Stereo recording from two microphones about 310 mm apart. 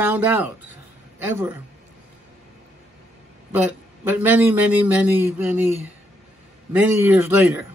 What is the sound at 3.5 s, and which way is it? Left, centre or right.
A man's voice, centre.